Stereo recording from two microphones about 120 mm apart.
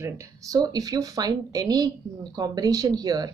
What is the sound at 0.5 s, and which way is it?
A woman's voice, 35° right (ahead or behind).